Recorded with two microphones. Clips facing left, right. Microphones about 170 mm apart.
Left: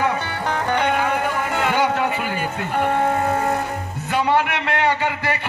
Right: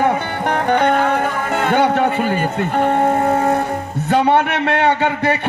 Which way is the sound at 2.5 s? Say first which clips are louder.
Right 4 dB; 25° right (ahead or behind).